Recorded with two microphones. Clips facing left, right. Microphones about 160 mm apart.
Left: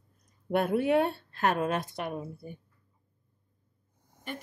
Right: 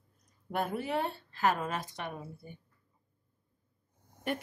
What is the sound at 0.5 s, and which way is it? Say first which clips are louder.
A woman's voice: left 8 dB; 65° left (ahead or behind).